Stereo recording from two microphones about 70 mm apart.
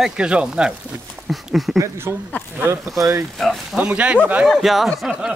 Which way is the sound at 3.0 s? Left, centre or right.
Right.